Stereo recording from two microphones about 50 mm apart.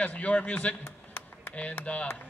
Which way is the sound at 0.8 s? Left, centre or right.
Left.